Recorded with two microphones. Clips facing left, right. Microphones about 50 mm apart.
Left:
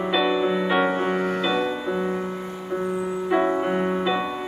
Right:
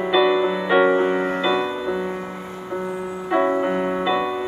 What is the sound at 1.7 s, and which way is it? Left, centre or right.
Music, centre.